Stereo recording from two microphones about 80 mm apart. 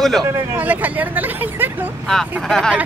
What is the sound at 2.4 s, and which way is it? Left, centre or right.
Speech, centre.